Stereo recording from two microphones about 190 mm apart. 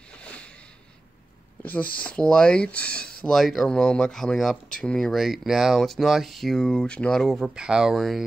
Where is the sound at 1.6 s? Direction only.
10° left (ahead or behind).